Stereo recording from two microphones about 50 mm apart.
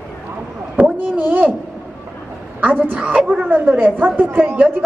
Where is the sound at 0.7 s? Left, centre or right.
Right.